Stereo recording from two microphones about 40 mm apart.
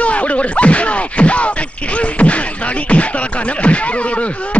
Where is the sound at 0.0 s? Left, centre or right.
Left.